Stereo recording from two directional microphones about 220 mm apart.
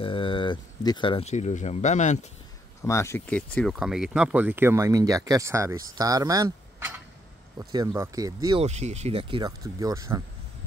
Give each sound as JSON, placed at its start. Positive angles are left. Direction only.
{"t": 0.0, "sound": "speech", "side_deg": 25}
{"t": 2.8, "sound": "speech", "side_deg": 10}
{"t": 8.6, "sound": "speech", "side_deg": -30}